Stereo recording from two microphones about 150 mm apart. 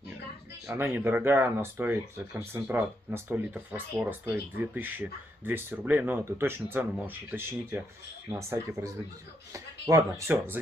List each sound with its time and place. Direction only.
0.7 s speech: 15° right (ahead or behind)